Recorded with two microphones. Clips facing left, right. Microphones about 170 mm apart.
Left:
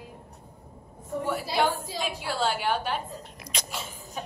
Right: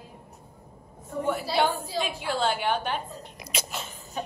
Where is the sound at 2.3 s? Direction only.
5° left (ahead or behind).